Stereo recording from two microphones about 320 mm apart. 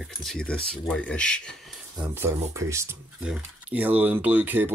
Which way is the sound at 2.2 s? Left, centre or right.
Centre.